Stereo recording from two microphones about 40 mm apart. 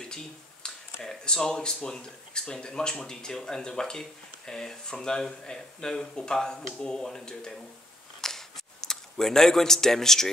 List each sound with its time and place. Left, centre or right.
0.0 s a sound: centre
1.0 s speech: centre
8.2 s single-lens reflex camera: centre
9.1 s speech: centre